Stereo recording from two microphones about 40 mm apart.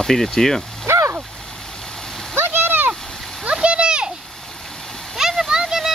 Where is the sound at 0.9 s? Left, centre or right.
Right.